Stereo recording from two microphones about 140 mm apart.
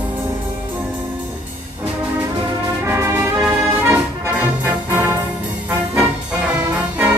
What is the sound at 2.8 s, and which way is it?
Brass instrument, 15° right (ahead or behind).